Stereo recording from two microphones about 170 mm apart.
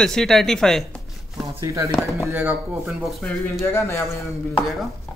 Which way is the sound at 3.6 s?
15° left (ahead or behind).